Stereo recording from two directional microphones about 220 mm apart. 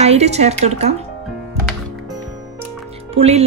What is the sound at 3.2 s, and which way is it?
Speech, 30° right (ahead or behind).